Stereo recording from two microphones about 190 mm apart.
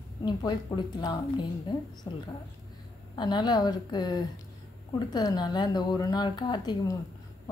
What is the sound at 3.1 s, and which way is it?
Speech, 25° left (ahead or behind).